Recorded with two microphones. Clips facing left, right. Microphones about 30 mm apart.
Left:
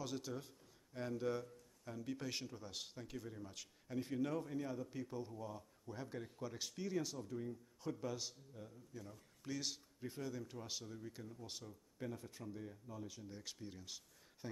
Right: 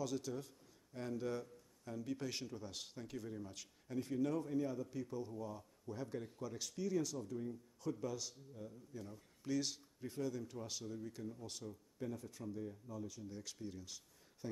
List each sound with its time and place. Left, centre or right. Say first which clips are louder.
0.0 s a man's voice: right 3 dB; centre
9.4 s a man's voice: right 5 dB; centre
12.0 s speech: right 2 dB; centre